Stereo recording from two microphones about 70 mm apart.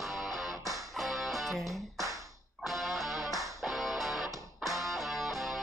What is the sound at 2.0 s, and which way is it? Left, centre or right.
Tap, right.